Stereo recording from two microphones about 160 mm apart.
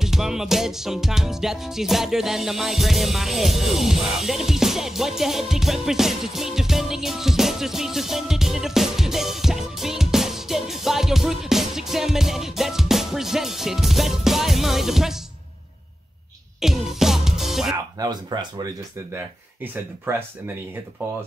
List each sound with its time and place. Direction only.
0.0 s music: 5° right (ahead or behind)
16.5 s music: 5° right (ahead or behind)
17.9 s speech: 25° right (ahead or behind)
19.1 s speech: 15° right (ahead or behind)